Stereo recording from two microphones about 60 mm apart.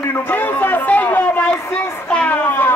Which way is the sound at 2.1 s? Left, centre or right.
Centre.